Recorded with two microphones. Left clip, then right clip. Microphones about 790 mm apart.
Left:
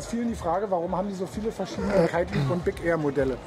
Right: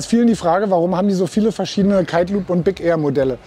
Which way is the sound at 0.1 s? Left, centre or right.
Right.